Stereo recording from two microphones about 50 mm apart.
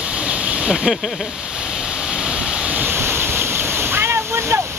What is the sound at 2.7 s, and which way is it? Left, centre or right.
Waves, right.